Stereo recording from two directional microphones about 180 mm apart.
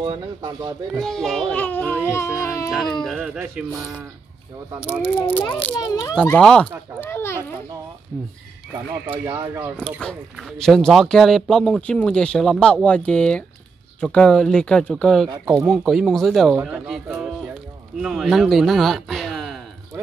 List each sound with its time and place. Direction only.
0.0 s speech: 25° right (ahead or behind)
0.9 s speech: 5° left (ahead or behind)
3.0 s speech: centre (ahead or behind)
5.2 s speech: 10° left (ahead or behind)
5.6 s a child's voice: 25° left (ahead or behind)
6.1 s speech: 5° left (ahead or behind)
9.0 s speech: 15° right (ahead or behind)
9.8 s speech: 5° left (ahead or behind)